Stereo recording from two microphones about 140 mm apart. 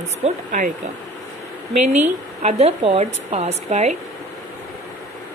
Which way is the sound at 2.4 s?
45° right (ahead or behind).